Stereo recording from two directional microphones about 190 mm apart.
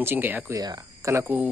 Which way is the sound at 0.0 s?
10° right (ahead or behind).